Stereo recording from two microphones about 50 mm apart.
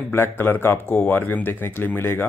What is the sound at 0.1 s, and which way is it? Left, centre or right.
Speech, left.